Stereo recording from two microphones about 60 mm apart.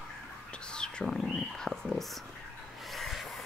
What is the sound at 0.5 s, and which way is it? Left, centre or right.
Whispering, centre.